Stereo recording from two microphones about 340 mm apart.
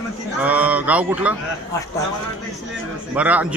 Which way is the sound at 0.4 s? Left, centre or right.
Centre.